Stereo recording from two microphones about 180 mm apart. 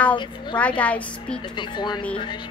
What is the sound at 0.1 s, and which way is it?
Speech, 25° left (ahead or behind).